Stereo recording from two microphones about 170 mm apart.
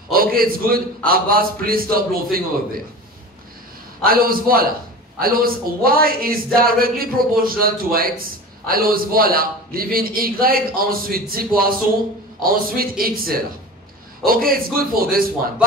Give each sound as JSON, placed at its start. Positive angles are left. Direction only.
{"t": 0.1, "sound": "a man's voice", "side_deg": -60}
{"t": 4.0, "sound": "a man's voice", "side_deg": -60}